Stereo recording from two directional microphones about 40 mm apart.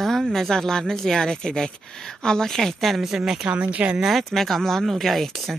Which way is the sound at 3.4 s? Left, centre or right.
Right.